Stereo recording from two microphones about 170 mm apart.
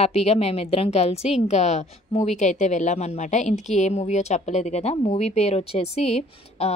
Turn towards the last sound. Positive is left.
turn(degrees=35)  # may be behind; listen again after turning